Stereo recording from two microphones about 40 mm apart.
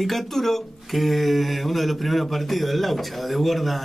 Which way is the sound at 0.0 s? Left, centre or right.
Centre.